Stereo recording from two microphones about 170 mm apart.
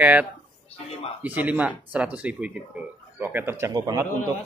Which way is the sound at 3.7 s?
25° right (ahead or behind).